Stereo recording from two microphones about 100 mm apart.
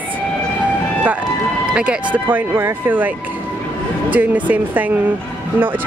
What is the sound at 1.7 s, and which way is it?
Speech, 10° right (ahead or behind).